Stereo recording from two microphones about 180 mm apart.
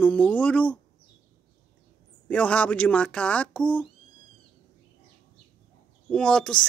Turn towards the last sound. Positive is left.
turn(degrees=5)  # may be behind; listen again after turning